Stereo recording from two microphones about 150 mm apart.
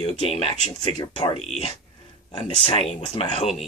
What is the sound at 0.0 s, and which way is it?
Speech, 40° left (ahead or behind).